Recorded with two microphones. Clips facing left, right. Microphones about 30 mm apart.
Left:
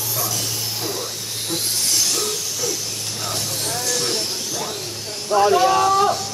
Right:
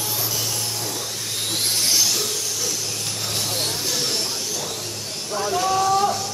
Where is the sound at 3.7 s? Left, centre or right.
Centre.